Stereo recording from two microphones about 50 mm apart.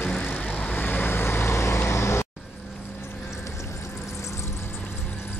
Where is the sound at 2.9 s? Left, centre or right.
Left.